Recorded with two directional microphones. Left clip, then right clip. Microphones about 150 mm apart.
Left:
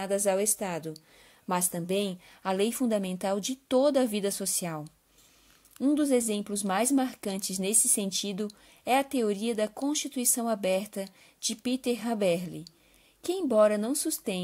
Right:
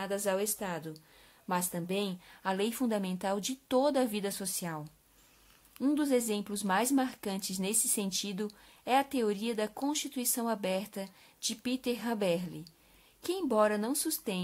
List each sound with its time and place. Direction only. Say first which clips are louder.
0.0 s a woman's voice: left 5 dB; 30° left (ahead or behind)
5.8 s a woman's voice: left 4 dB; 15° left (ahead or behind)